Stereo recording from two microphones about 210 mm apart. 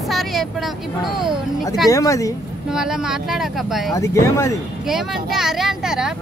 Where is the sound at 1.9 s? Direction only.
15° left (ahead or behind).